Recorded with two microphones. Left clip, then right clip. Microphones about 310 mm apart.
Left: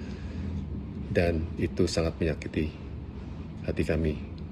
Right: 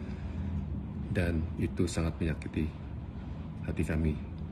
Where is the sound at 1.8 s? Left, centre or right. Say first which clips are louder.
Left 8 dB; centre.